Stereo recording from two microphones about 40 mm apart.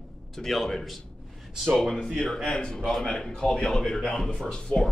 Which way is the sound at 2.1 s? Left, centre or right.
Centre.